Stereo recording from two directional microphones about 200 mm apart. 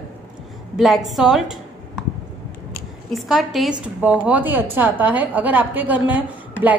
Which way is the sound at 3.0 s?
Centre (ahead or behind).